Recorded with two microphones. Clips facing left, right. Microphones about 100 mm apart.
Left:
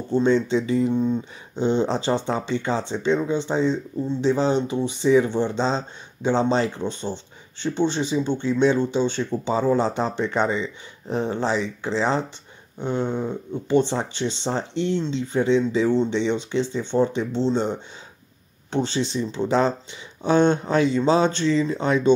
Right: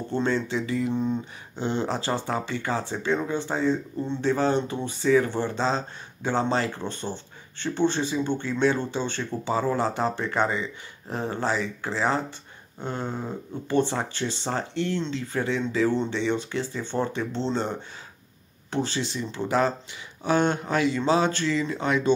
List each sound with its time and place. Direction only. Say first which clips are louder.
0.3 s speech: left 6 dB; 30° left (ahead or behind)
18.7 s speech: left 4 dB; 25° left (ahead or behind)